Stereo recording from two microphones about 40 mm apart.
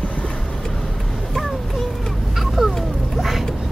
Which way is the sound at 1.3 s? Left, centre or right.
Centre.